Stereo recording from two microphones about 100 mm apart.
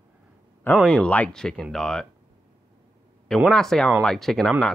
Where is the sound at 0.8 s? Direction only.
10° left (ahead or behind).